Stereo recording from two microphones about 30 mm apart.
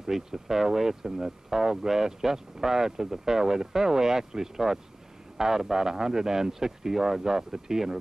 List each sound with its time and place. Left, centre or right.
0.0 s speech: centre